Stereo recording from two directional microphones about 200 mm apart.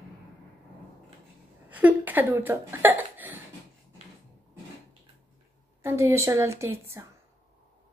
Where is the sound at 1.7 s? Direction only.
10° right (ahead or behind).